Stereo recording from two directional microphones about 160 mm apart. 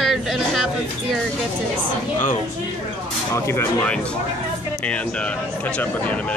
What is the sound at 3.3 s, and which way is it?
A man's voice, 15° left (ahead or behind).